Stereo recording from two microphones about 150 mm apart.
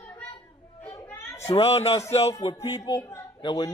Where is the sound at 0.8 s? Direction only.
15° left (ahead or behind).